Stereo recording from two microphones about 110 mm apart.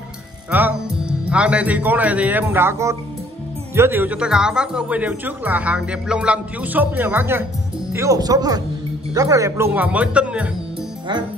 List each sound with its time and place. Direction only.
0.5 s a man's voice: 15° right (ahead or behind)
9.7 s a man's voice: 15° right (ahead or behind)